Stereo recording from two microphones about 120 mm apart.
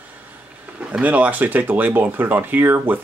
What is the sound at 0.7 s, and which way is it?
Speech, 10° right (ahead or behind).